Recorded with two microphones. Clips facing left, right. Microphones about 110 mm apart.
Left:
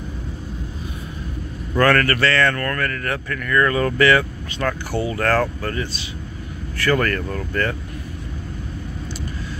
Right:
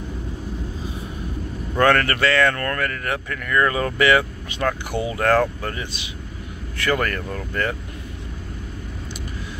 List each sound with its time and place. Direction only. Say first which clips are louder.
1.8 s speech: left 1 dB; 20° right (ahead or behind)